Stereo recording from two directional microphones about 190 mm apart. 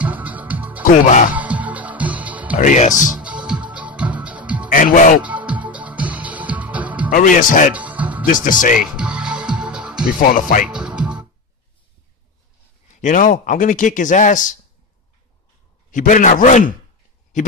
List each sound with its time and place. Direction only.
0.0 s music: 10° right (ahead or behind)
0.8 s speech: 40° left (ahead or behind)
1.3 s music: 10° right (ahead or behind)
2.5 s speech: 40° left (ahead or behind)
3.2 s music: 5° right (ahead or behind)
4.6 s speech: 45° left (ahead or behind)
5.2 s music: 5° right (ahead or behind)
7.1 s speech: 45° left (ahead or behind)
7.7 s music: 5° right (ahead or behind)
8.3 s speech: 45° left (ahead or behind)
8.7 s music: 5° right (ahead or behind)
13.0 s speech: 45° left (ahead or behind)
15.9 s speech: 45° left (ahead or behind)